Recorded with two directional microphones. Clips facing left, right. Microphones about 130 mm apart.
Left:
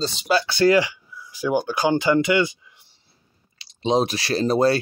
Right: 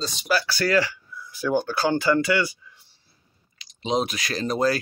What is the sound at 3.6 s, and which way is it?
Speech, 30° left (ahead or behind).